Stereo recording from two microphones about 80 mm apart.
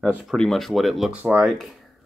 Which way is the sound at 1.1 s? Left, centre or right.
Centre.